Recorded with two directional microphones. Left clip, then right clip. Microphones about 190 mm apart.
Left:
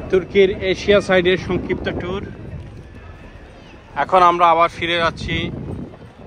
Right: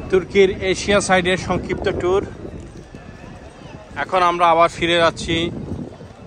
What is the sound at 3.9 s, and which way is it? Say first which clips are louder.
Speech: left 4 dB; 5° right (ahead or behind).